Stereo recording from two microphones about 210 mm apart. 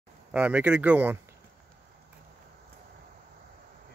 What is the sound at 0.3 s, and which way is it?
Speech, 5° right (ahead or behind).